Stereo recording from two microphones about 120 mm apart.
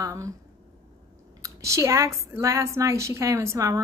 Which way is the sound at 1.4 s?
25° right (ahead or behind).